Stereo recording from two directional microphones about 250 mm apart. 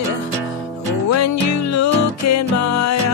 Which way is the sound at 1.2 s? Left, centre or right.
Left.